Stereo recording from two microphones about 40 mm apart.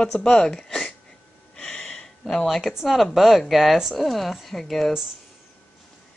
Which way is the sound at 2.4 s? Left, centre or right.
Centre.